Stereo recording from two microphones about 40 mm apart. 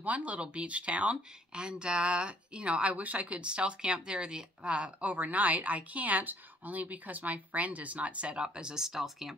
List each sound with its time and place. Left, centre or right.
0.0 s a woman's voice: right
5.1 s a woman's voice: right; by 9.4 s centre